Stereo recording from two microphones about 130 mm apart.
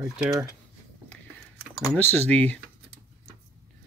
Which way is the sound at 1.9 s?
10° left (ahead or behind).